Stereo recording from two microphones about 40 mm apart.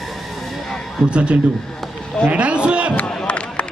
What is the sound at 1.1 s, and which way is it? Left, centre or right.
Speech, right.